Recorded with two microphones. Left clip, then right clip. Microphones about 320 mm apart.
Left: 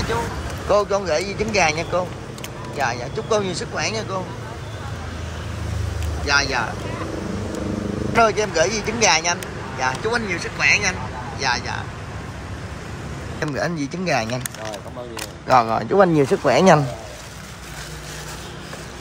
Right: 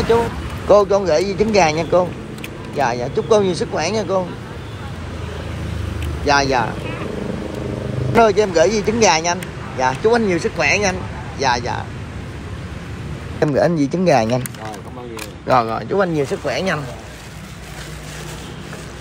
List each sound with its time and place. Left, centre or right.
0.7 s speech: centre
6.2 s speech: centre
8.1 s speech: centre
13.4 s speech: centre
15.4 s speech: centre